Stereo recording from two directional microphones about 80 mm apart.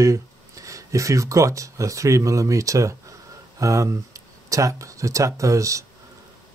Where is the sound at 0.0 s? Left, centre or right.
Right.